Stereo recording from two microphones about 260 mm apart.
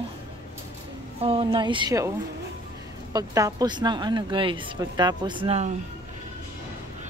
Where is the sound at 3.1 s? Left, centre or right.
Centre.